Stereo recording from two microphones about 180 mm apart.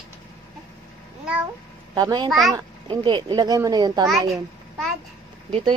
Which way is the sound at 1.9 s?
25° right (ahead or behind).